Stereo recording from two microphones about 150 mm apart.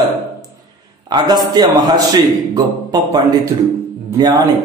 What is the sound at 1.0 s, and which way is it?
A man's voice, 25° right (ahead or behind).